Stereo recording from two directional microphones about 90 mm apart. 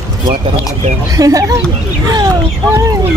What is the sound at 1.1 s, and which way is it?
Speech, 40° right (ahead or behind).